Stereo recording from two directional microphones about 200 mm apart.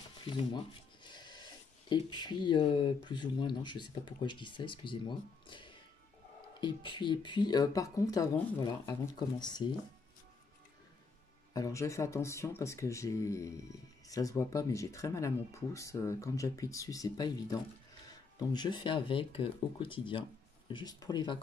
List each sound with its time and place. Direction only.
1.0 s speech: 20° left (ahead or behind)
11.5 s speech: 15° left (ahead or behind)